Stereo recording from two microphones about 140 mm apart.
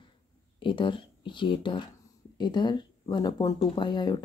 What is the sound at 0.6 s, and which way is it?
Speech, 35° left (ahead or behind).